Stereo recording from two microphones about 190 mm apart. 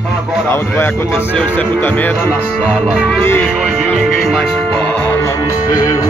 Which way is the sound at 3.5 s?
5° right (ahead or behind).